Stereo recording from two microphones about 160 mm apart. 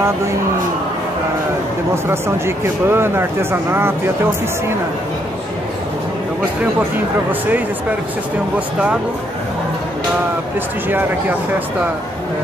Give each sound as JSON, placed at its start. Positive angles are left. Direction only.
{"t": 2.0, "sound": "speech", "side_deg": -15}
{"t": 10.9, "sound": "speech", "side_deg": -10}